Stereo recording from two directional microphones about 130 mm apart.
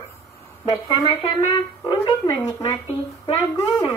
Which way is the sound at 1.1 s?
45° left (ahead or behind).